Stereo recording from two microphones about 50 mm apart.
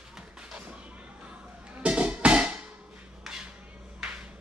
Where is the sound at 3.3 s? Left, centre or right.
Centre.